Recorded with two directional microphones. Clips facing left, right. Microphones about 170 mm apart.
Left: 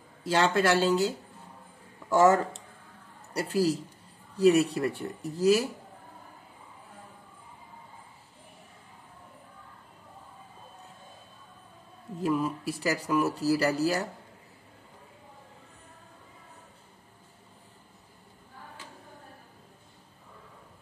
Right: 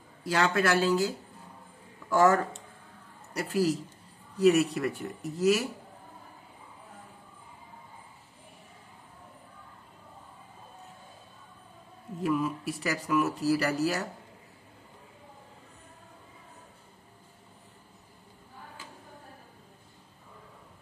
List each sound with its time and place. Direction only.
0.2 s speech: 25° left (ahead or behind)
12.2 s speech: 30° left (ahead or behind)